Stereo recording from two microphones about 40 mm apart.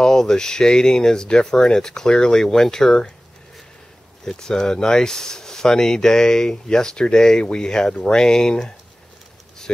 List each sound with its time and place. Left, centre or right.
0.0 s speech: centre
4.2 s speech: centre